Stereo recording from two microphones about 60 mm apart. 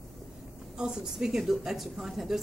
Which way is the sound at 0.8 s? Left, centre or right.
Centre.